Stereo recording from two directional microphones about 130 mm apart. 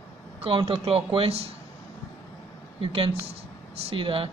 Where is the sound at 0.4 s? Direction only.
45° right (ahead or behind).